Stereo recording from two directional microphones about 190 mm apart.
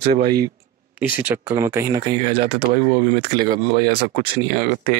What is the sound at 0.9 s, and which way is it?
Speech, 10° right (ahead or behind).